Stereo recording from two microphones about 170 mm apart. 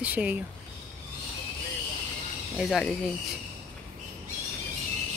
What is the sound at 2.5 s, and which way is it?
Speech, centre (ahead or behind).